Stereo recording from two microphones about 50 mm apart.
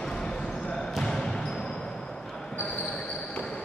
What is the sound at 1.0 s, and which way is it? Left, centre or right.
Basketball bounce, centre.